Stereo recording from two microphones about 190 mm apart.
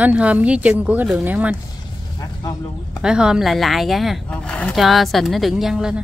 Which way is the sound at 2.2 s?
20° left (ahead or behind).